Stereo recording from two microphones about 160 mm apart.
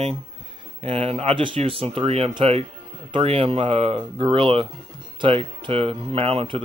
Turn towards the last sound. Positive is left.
turn(degrees=-35)  # may be behind; listen again after turning